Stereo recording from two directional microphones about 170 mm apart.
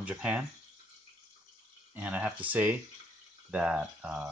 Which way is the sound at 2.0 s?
10° right (ahead or behind).